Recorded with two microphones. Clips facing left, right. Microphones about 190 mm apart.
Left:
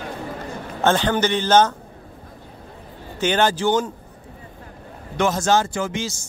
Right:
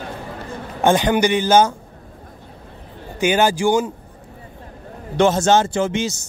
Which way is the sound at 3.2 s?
10° right (ahead or behind).